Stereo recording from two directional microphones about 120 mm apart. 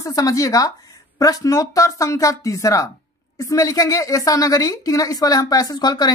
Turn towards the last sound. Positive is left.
turn(degrees=35)  # may be behind; listen again after turning